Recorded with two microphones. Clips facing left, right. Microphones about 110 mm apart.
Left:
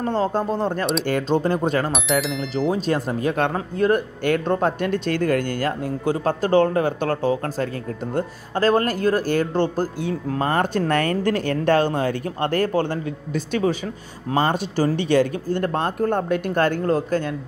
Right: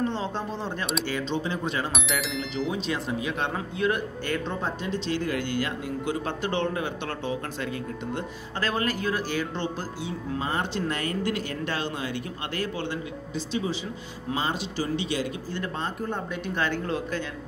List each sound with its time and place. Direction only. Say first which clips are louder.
0.0 s speech: left 7 dB; 45° left (ahead or behind)
1.9 s speech: left 7 dB; centre (ahead or behind)
2.7 s speech: left 7 dB; 45° left (ahead or behind)